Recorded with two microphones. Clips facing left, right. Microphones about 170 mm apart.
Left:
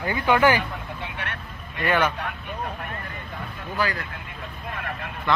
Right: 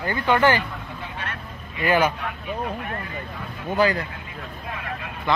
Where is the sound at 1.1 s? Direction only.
65° left (ahead or behind).